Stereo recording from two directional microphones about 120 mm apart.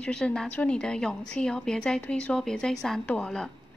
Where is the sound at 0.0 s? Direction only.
5° left (ahead or behind).